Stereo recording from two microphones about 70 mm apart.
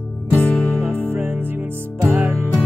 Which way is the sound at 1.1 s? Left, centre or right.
Right.